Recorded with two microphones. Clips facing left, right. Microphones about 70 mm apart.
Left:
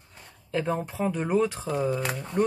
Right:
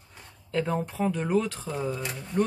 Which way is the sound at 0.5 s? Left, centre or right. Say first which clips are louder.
Even; centre.